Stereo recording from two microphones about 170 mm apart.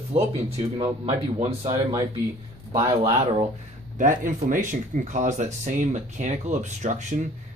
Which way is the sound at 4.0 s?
50° right (ahead or behind).